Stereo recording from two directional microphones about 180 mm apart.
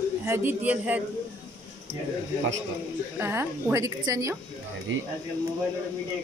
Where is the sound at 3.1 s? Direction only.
15° right (ahead or behind).